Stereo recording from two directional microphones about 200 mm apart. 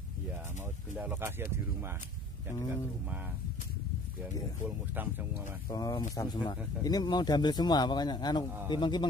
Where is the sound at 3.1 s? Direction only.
10° right (ahead or behind).